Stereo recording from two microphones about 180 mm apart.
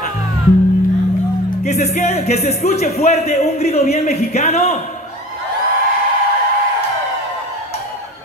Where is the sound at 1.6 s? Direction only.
40° left (ahead or behind).